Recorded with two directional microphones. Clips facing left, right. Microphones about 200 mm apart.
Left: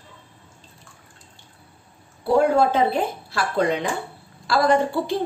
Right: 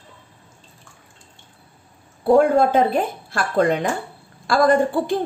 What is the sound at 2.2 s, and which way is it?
A woman's voice, 50° right (ahead or behind).